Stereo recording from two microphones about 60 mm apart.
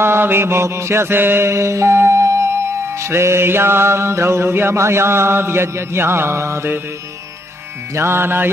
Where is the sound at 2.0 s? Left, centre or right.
Right.